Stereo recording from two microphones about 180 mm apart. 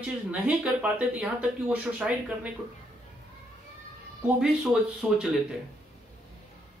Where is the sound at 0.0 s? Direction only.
5° right (ahead or behind).